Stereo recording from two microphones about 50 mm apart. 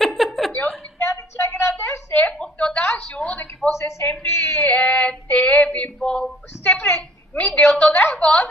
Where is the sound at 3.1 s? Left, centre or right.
Left.